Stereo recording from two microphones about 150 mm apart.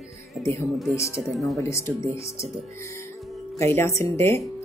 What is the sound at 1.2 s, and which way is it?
Speech, centre (ahead or behind).